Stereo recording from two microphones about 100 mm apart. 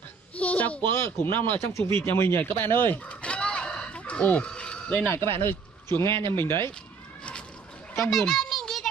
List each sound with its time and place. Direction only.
0.4 s speech: 15° left (ahead or behind)
5.3 s speech: 20° left (ahead or behind)
5.9 s speech: 50° right (ahead or behind)
6.3 s speech: 25° left (ahead or behind)
7.9 s a sound: 5° left (ahead or behind)